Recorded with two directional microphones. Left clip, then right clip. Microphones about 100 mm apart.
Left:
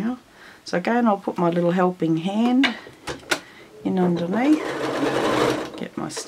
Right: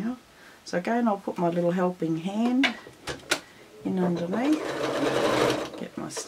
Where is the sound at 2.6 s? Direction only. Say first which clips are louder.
Left 4 dB; centre (ahead or behind).